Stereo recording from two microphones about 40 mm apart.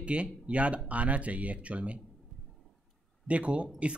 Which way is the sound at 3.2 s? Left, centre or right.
Right.